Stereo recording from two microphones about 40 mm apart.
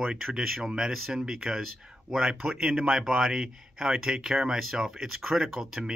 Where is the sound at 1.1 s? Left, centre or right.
Centre.